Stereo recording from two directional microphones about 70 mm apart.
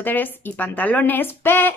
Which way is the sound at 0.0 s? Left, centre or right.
Left.